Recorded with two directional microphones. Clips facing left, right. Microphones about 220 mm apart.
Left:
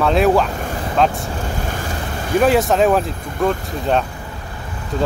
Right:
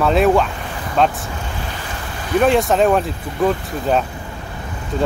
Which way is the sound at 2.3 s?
Centre (ahead or behind).